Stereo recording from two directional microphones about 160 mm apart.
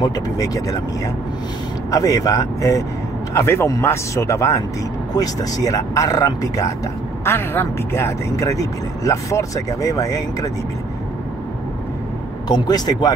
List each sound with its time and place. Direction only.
0.0 s speech: 20° left (ahead or behind)
1.9 s speech: 20° left (ahead or behind)
12.4 s speech: 25° left (ahead or behind)